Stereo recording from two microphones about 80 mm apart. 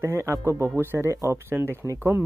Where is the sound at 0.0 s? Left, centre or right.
Right.